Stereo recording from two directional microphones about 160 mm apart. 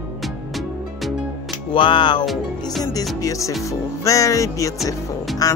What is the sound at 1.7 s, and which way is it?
Speech, 30° left (ahead or behind).